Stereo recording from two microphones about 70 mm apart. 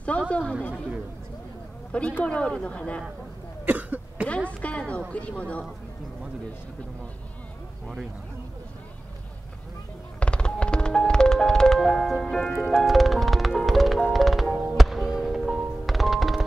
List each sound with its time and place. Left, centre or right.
0.3 s speech: centre
1.9 s speech: centre
3.6 s cough: right
4.5 s a sound: centre
5.1 s speech: centre
10.2 s music: centre